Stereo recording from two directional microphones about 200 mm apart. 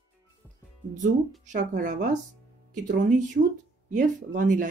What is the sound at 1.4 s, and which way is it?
Speech, 40° right (ahead or behind).